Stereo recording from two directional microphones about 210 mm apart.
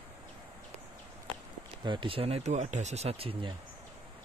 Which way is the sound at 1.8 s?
20° right (ahead or behind).